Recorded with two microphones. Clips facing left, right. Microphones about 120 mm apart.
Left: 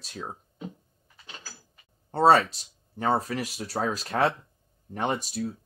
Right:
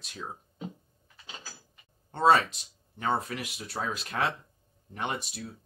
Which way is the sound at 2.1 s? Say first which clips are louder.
Left 3 dB; 35° left (ahead or behind).